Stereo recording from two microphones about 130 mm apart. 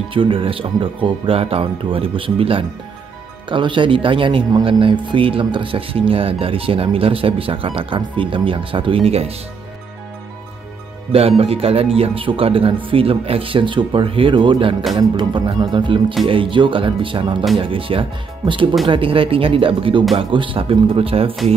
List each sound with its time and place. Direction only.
0.1 s speech: 40° right (ahead or behind)
11.1 s speech: 50° right (ahead or behind)